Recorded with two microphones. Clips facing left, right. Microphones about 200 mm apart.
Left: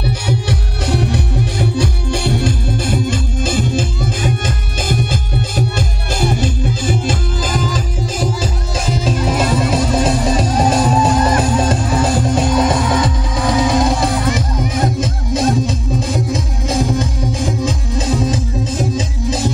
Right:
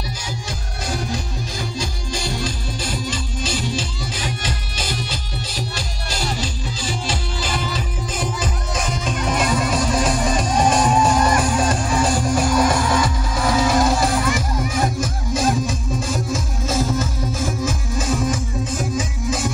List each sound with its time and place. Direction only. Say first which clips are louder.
0.0 s music: left 10 dB; 65° left (ahead or behind); by 7.7 s 50° left (ahead or behind)
8.2 s music: left 4 dB; 30° left (ahead or behind)
9.2 s music: left 3 dB; 5° left (ahead or behind)
9.9 s music: left 5 dB; 25° left (ahead or behind)
10.5 s music: left 1 dB; 5° left (ahead or behind)
11.2 s music: left 4 dB; 20° left (ahead or behind)